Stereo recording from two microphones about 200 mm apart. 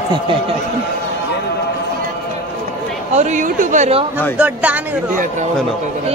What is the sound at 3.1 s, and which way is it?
Speech, 35° right (ahead or behind).